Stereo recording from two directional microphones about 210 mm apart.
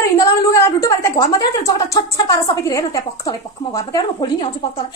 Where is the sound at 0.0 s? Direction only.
15° left (ahead or behind).